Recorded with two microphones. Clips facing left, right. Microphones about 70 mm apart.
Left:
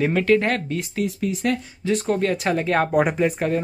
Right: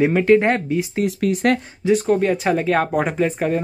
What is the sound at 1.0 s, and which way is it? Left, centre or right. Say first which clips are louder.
Speech: right 1 dB; right.